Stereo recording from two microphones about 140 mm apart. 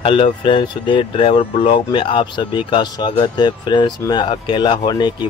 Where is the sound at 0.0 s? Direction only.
40° left (ahead or behind).